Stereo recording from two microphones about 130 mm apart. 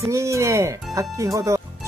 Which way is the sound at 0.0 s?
20° right (ahead or behind).